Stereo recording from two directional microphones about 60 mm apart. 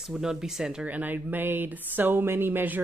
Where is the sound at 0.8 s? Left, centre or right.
Right.